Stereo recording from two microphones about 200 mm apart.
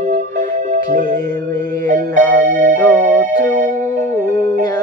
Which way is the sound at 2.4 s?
40° right (ahead or behind).